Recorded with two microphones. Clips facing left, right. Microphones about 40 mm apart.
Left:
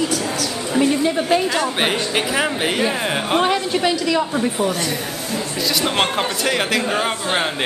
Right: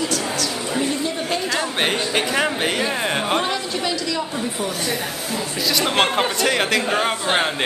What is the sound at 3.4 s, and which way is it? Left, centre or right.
A woman's voice, left.